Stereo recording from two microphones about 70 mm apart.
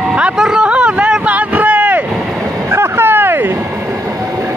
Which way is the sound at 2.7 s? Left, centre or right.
Right.